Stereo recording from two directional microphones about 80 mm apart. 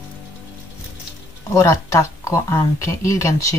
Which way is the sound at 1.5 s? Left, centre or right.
Left.